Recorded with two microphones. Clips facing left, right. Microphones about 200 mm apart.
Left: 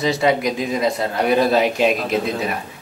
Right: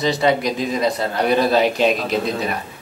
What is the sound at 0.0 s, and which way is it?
Speech, centre (ahead or behind).